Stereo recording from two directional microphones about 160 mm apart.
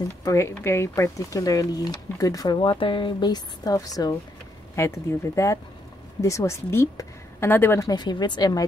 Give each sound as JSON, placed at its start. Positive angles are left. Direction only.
{"t": 0.2, "sound": "a woman's voice", "side_deg": 20}
{"t": 7.9, "sound": "speech", "side_deg": 25}